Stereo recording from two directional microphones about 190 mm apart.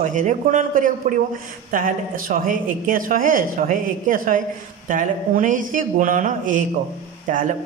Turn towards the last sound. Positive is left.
turn(degrees=-45)  # may be behind; listen again after turning